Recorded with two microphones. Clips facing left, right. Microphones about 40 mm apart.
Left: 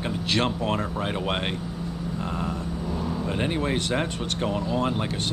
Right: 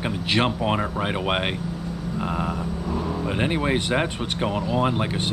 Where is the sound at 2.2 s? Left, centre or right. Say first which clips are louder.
Right 5 dB; centre.